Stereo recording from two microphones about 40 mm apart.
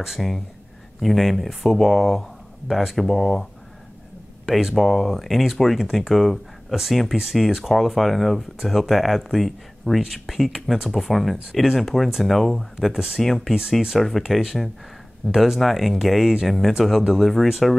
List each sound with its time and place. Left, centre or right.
0.0 s speech: centre
4.5 s speech: centre
4.7 s speech: centre
15.6 s speech: centre